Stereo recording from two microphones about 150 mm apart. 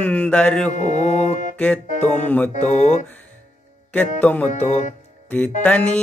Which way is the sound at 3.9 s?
10° left (ahead or behind).